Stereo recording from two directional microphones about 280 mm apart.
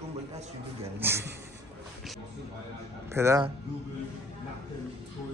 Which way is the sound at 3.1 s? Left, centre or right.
Centre.